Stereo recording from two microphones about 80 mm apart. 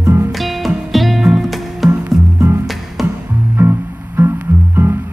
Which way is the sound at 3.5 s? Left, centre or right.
Right.